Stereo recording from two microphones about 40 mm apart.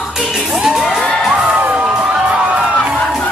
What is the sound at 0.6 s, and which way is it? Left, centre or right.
Crowd, centre.